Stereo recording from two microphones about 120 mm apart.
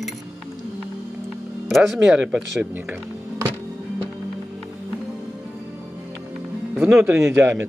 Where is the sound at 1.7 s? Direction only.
5° right (ahead or behind).